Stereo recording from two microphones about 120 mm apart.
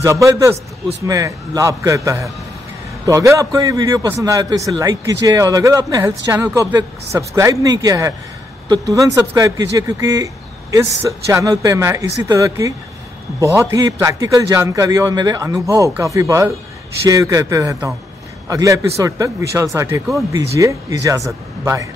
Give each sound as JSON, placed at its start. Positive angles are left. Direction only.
{"t": 0.0, "sound": "speech", "side_deg": -25}